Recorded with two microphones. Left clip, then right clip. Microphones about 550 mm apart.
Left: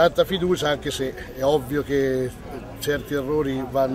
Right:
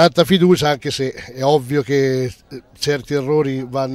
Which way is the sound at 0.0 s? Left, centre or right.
Right.